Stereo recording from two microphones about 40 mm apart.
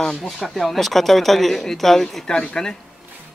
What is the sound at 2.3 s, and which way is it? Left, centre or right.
Speech, centre.